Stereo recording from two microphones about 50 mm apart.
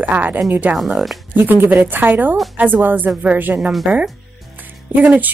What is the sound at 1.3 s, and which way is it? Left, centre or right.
Speech, right.